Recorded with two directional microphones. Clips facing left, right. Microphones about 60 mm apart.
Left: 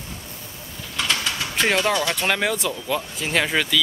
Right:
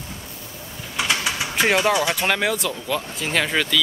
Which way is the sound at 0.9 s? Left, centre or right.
Centre.